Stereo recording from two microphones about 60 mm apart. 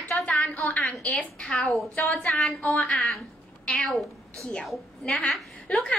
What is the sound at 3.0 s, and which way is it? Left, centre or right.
A woman's voice, centre.